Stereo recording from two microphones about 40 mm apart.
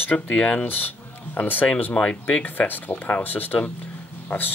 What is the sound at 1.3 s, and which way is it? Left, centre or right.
Speech, left.